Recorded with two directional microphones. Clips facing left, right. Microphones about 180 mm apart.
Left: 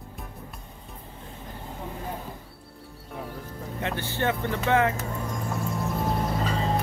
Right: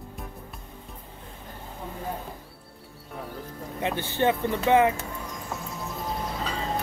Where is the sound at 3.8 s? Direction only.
15° right (ahead or behind).